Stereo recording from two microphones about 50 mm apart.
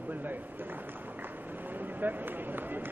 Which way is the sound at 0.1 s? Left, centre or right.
Right.